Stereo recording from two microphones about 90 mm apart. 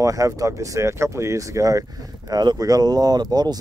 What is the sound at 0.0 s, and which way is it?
Speech, 40° right (ahead or behind).